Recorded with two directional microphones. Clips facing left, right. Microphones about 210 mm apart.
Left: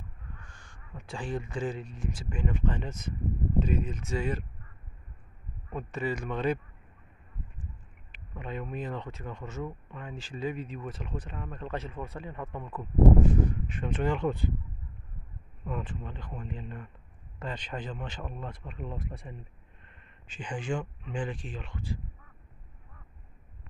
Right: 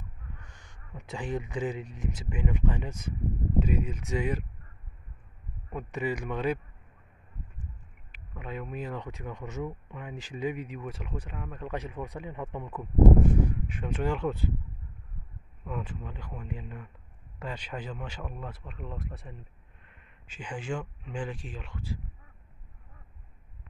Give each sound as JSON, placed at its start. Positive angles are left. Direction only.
{"t": 0.4, "sound": "owl", "side_deg": -20}
{"t": 1.0, "sound": "speech", "side_deg": -20}
{"t": 5.7, "sound": "speech", "side_deg": -10}
{"t": 8.1, "sound": "speech", "side_deg": -5}
{"t": 15.6, "sound": "speech", "side_deg": -5}